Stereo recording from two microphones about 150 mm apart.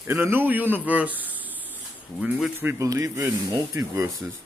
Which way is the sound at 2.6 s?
20° right (ahead or behind).